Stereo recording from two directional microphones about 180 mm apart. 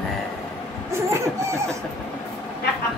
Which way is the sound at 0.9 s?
15° right (ahead or behind).